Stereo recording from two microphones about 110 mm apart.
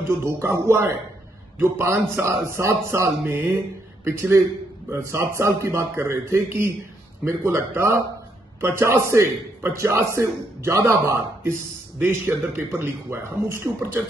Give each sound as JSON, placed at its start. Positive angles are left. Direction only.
{"t": 0.0, "sound": "speech", "side_deg": -25}